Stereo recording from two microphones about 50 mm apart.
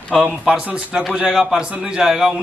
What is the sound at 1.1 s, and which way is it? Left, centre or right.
A man's voice, centre.